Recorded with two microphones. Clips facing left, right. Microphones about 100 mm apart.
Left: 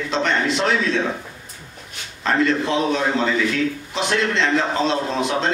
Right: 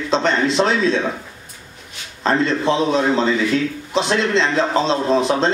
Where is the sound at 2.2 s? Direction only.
30° right (ahead or behind).